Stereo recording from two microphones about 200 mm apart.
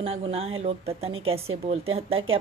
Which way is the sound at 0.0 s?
30° right (ahead or behind).